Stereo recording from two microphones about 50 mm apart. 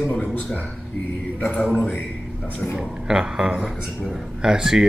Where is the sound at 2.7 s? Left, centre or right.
Centre.